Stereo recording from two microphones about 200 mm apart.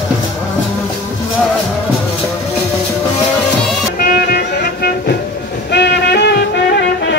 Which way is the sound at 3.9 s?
45° left (ahead or behind).